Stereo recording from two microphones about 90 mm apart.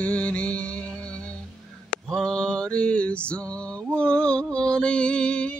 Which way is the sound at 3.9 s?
10° left (ahead or behind).